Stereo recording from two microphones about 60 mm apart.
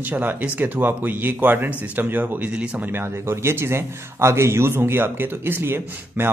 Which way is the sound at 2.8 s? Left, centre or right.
Right.